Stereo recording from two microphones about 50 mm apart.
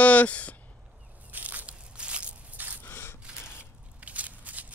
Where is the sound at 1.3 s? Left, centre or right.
Right.